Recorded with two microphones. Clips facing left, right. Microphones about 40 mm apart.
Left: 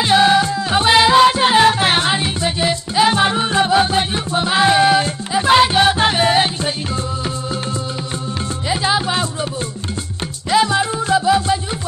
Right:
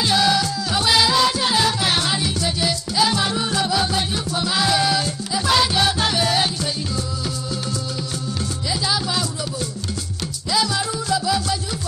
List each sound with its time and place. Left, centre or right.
0.0 s music: left
8.6 s music: left
10.5 s music: left